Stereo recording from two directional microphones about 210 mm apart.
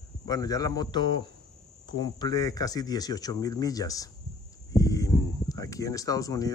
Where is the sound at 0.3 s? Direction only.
15° left (ahead or behind).